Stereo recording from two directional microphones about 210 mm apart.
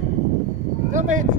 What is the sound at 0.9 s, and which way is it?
Speech, 35° right (ahead or behind).